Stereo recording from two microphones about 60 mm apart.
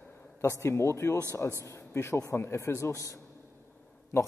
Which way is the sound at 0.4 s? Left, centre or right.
Left.